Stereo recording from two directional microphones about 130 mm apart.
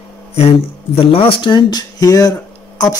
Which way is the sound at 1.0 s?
45° left (ahead or behind).